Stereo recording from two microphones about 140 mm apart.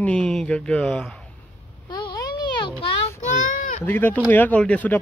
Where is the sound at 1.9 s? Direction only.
30° left (ahead or behind).